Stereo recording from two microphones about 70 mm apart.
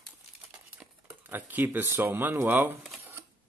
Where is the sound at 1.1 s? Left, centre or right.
Right.